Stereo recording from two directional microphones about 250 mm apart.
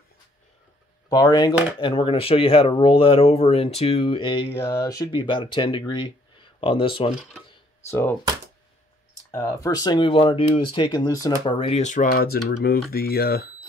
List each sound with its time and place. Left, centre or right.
1.0 s speech: centre
7.4 s a sound: centre
9.3 s speech: centre; by 13.5 s left